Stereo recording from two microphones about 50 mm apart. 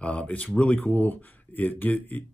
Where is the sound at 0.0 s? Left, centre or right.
Left.